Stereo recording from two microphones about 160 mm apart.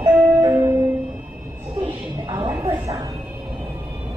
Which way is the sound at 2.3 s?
20° right (ahead or behind).